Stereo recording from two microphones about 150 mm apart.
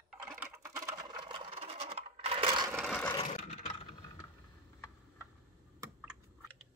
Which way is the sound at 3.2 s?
45° left (ahead or behind).